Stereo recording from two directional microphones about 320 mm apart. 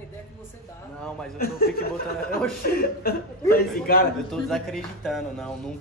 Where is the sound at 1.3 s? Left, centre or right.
Left.